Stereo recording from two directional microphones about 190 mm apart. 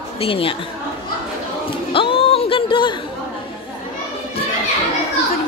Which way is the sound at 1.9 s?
30° left (ahead or behind).